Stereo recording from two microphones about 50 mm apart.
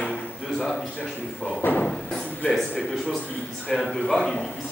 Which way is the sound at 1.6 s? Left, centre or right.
Left.